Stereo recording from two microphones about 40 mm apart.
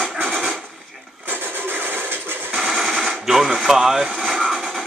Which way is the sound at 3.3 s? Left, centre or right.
Centre.